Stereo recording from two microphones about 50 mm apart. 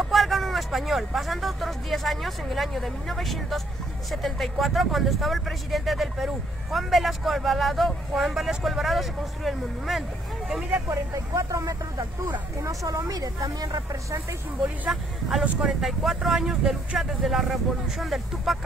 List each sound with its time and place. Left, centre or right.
0.0 s speech: centre
10.9 s speech: right
14.6 s speech: centre